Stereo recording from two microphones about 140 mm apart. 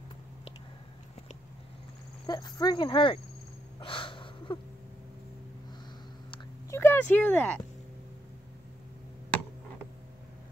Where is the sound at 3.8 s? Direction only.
40° left (ahead or behind).